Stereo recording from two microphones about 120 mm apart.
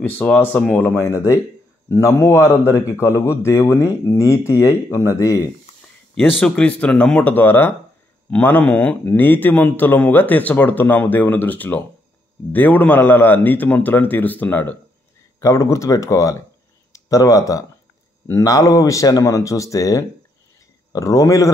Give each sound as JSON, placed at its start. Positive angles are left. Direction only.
{"t": 0.0, "sound": "a man's voice", "side_deg": 15}
{"t": 6.3, "sound": "a man's voice", "side_deg": 10}